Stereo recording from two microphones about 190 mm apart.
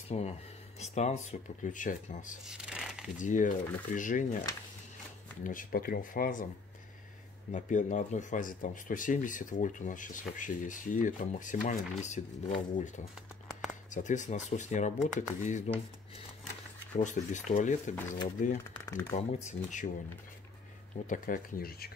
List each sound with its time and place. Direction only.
0.1 s speech: 35° left (ahead or behind)
2.4 s shuffling cards: 5° right (ahead or behind)
3.2 s speech: 40° left (ahead or behind)
5.4 s speech: 45° left (ahead or behind)
7.5 s speech: 40° left (ahead or behind)
13.5 s a sound: 5° right (ahead or behind)
13.8 s speech: 40° left (ahead or behind)
16.9 s speech: 40° left (ahead or behind)
17.9 s speech: 15° left (ahead or behind)
19.1 s speech: 40° left (ahead or behind)
20.9 s speech: 45° left (ahead or behind)